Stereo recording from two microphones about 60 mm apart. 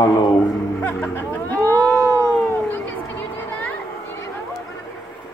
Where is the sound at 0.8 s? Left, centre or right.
Left.